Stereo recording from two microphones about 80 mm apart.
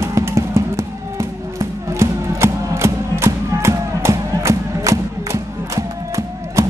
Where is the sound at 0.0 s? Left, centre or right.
Right.